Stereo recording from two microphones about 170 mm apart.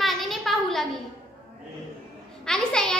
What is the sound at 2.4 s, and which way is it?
Speech, 5° left (ahead or behind).